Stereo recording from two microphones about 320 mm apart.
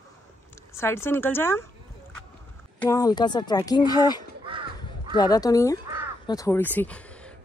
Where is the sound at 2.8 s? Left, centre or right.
Centre.